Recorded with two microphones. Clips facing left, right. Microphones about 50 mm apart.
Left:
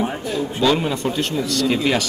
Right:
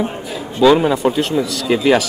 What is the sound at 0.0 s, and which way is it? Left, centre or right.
Speech, centre.